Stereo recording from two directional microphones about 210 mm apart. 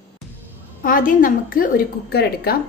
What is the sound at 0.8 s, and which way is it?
A woman's voice, 40° left (ahead or behind).